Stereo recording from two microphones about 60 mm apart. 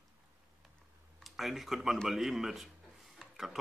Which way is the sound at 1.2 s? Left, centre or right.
Centre.